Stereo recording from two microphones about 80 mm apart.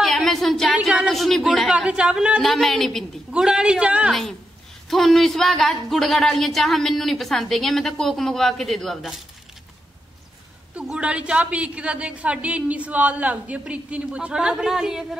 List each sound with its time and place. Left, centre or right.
0.0 s a sound: centre
0.7 s speech: centre
2.4 s speech: centre
3.3 s speech: centre
4.1 s speech: centre
10.8 s speech: centre